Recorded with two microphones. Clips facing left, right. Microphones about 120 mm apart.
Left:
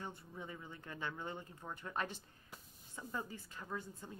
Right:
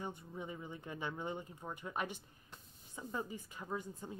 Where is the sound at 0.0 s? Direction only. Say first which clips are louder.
Right 3 dB; 15° right (ahead or behind).